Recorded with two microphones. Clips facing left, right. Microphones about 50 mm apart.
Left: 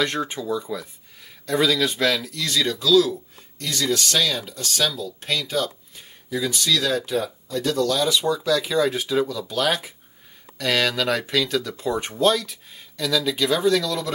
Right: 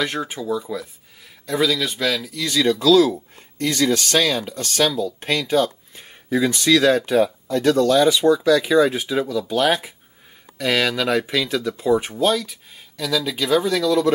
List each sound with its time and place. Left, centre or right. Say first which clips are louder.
0.0 s speech: even; centre
2.4 s speech: right 6 dB; right
2.8 s speech: right 2 dB; right
7.1 s speech: right 7 dB; right; by 9.4 s centre
9.5 s speech: right 4 dB; right
10.6 s speech: right 2 dB; centre